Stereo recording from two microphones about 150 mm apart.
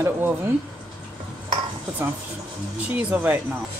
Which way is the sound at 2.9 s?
10° right (ahead or behind).